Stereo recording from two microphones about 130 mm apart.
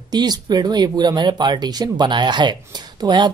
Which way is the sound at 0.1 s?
30° right (ahead or behind).